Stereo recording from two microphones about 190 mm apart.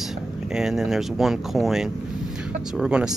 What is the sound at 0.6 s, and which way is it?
Speech, centre (ahead or behind).